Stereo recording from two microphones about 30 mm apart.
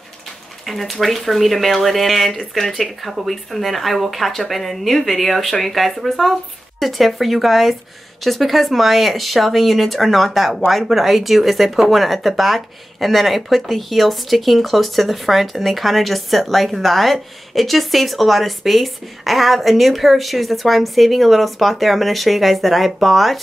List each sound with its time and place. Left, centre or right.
0.7 s speech: centre